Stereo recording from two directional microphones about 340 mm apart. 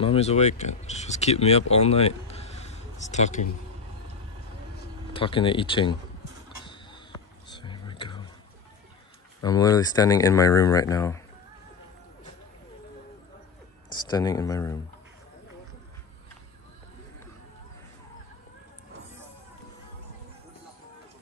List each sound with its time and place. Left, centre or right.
0.0 s speech: centre
5.1 s speech: centre
6.6 s a sound: centre
7.5 s whispering: centre
9.4 s speech: centre
13.9 s speech: centre